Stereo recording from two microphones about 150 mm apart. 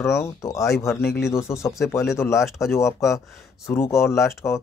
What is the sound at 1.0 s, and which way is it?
Speech, centre (ahead or behind).